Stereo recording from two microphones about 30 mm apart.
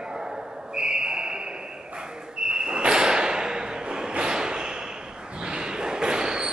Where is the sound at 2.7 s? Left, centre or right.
Right.